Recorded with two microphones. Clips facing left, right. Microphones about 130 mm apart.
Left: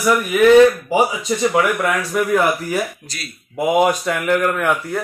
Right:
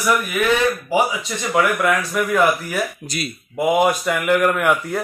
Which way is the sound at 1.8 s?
15° left (ahead or behind).